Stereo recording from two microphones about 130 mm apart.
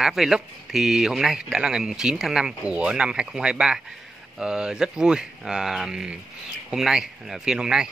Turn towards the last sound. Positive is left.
turn(degrees=-5)  # may be behind; listen again after turning